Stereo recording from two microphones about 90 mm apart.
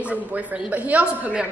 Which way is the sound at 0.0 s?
15° right (ahead or behind).